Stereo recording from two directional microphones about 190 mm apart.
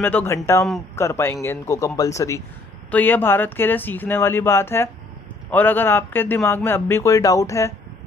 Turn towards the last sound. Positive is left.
turn(degrees=15)  # may be behind; listen again after turning